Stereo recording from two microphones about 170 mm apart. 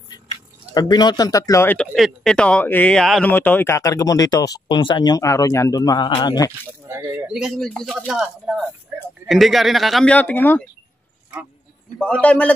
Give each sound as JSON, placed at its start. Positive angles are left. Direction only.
{"t": 0.7, "sound": "speech", "side_deg": 25}
{"t": 2.0, "sound": "speech", "side_deg": 0}
{"t": 7.2, "sound": "speech", "side_deg": -5}
{"t": 12.0, "sound": "a man's voice", "side_deg": 5}